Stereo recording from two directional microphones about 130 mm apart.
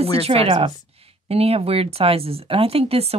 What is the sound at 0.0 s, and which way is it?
Speech, 50° right (ahead or behind).